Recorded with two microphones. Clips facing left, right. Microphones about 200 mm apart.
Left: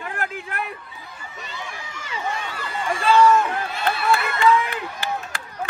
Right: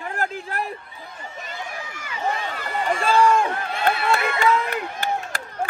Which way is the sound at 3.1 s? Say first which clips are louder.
Left 3 dB; 30° right (ahead or behind).